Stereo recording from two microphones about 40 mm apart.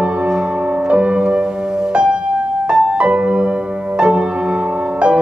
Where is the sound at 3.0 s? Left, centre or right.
Right.